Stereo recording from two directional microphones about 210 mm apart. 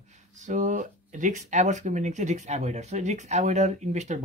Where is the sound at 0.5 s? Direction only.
35° right (ahead or behind).